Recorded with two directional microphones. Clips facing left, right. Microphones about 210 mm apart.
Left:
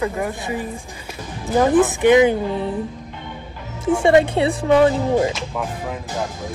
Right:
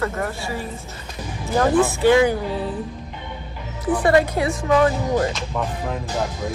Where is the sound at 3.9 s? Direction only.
25° left (ahead or behind).